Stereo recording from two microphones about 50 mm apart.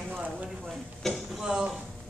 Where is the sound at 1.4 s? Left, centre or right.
Centre.